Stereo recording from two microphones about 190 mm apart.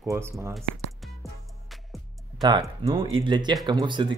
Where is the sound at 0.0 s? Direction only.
15° right (ahead or behind).